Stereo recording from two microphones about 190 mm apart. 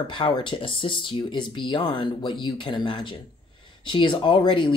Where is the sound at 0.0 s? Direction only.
25° left (ahead or behind).